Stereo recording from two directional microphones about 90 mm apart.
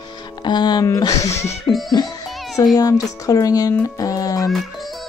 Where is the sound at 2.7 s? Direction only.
40° left (ahead or behind).